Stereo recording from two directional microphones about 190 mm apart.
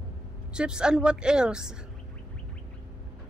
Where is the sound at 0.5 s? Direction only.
5° right (ahead or behind).